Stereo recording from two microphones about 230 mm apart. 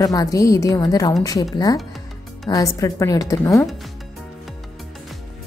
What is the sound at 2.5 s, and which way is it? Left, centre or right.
A woman's voice, centre.